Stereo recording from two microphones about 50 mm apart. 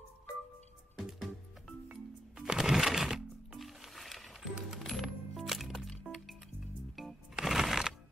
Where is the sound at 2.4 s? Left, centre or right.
Centre.